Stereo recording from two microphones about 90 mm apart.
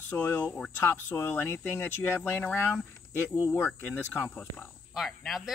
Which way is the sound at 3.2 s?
20° right (ahead or behind).